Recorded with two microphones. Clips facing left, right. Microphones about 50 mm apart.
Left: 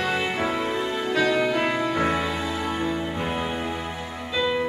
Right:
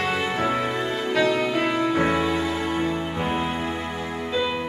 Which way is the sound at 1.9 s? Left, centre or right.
Centre.